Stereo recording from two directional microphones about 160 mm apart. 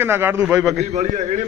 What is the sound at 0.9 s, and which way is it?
Speech, 50° right (ahead or behind).